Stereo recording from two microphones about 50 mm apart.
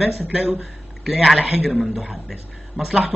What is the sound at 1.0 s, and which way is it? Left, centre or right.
Speech, centre.